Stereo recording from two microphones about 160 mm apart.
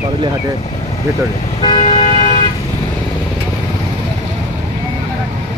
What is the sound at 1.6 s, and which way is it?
Vehicle, 35° left (ahead or behind).